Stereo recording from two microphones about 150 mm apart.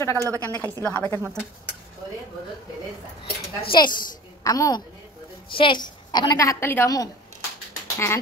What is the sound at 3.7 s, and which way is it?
A woman's voice, 30° left (ahead or behind).